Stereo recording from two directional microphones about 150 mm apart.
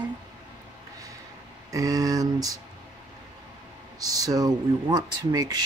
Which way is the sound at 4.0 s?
25° right (ahead or behind).